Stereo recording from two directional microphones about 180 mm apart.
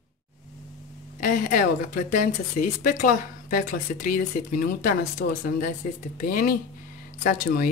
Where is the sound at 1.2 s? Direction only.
50° left (ahead or behind).